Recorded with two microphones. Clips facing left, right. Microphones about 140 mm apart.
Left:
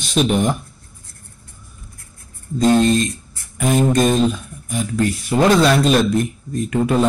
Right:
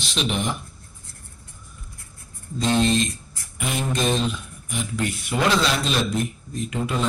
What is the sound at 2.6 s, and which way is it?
A man's voice, 45° left (ahead or behind).